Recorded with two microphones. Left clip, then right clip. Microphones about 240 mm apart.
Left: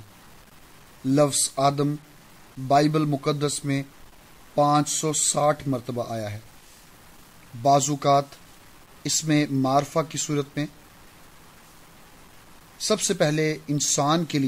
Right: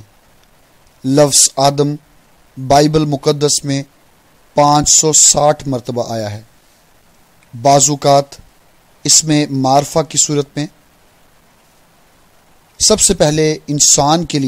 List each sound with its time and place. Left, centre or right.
1.0 s speech: right
7.6 s speech: right
12.7 s speech: right